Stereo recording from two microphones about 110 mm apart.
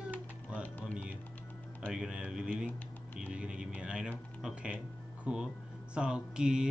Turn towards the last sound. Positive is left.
turn(degrees=-5)  # may be behind; listen again after turning